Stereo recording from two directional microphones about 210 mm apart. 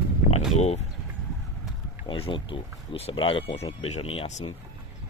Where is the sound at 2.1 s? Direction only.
25° left (ahead or behind).